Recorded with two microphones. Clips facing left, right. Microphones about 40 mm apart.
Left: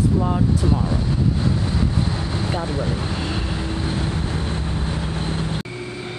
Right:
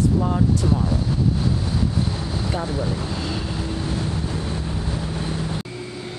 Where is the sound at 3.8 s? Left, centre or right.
Left.